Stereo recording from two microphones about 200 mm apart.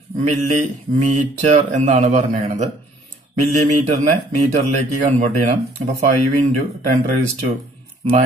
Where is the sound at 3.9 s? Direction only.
35° right (ahead or behind).